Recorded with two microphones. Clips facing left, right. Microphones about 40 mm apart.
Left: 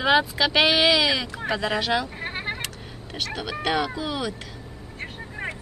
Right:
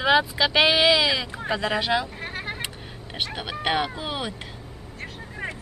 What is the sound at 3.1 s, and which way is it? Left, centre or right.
Speech, right.